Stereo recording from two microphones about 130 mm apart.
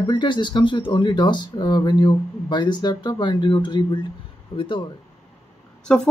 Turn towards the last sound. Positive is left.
turn(degrees=5)  # may be behind; listen again after turning